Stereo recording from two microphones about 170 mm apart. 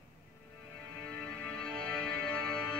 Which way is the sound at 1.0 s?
10° left (ahead or behind).